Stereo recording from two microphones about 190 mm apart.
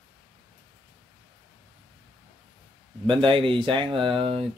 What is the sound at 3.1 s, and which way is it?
Speech, 25° right (ahead or behind).